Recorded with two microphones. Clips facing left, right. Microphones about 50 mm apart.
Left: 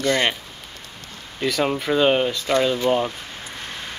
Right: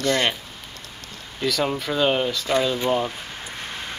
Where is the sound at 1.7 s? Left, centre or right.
Centre.